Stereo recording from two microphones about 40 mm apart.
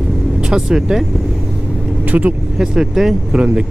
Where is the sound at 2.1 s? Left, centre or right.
Right.